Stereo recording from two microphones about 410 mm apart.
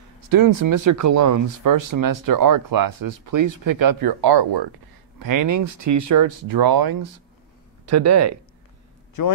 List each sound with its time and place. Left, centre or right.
0.3 s speech: right
5.2 s speech: right
7.8 s speech: right
9.2 s a man's voice: left